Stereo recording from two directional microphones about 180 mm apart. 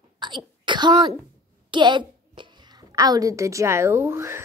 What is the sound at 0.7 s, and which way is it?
Speech, 25° right (ahead or behind).